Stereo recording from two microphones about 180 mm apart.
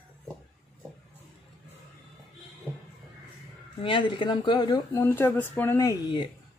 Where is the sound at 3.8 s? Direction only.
25° left (ahead or behind).